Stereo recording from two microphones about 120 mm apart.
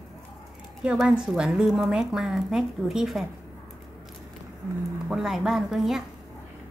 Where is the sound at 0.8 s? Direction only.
10° right (ahead or behind).